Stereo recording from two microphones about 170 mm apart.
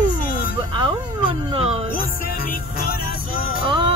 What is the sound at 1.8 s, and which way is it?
Music, 60° left (ahead or behind).